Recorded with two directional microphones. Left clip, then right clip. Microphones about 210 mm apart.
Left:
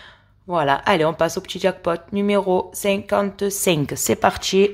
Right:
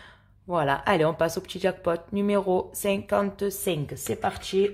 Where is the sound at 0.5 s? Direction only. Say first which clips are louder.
Left 6 dB; 5° left (ahead or behind).